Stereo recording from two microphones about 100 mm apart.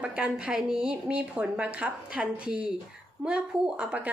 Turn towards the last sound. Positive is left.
turn(degrees=-10)  # may be behind; listen again after turning